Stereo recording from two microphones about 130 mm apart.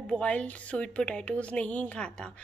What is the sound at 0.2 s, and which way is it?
Speech, 10° left (ahead or behind).